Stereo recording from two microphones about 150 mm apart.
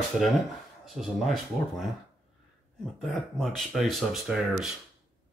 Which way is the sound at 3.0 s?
Centre (ahead or behind).